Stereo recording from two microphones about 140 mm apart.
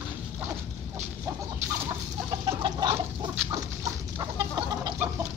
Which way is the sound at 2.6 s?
35° right (ahead or behind).